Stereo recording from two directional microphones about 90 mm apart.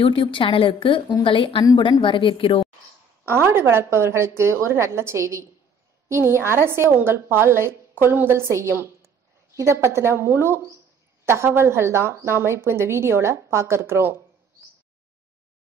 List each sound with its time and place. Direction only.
0.0 s a woman's voice: 70° left (ahead or behind)
3.3 s a woman's voice: 25° right (ahead or behind)